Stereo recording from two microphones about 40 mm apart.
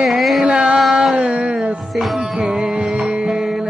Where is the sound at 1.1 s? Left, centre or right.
Right.